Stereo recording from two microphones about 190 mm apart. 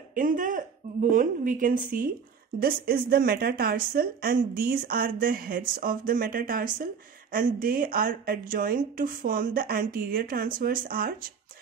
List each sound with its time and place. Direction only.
0.1 s speech: 45° right (ahead or behind)